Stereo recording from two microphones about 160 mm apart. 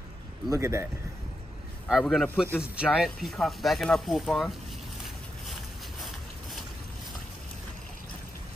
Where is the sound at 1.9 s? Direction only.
Centre (ahead or behind).